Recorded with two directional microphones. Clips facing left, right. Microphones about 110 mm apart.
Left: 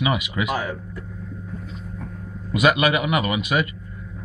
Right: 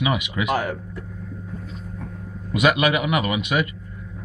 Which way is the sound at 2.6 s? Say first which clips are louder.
Even; centre (ahead or behind).